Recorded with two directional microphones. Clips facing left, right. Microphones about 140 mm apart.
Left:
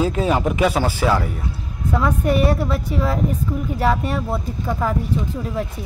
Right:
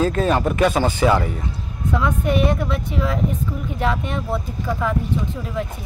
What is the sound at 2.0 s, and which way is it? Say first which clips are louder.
A woman's voice: left 1 dB; 40° left (ahead or behind).